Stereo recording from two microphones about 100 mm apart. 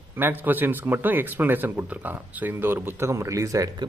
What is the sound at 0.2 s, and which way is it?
Speech, 20° right (ahead or behind).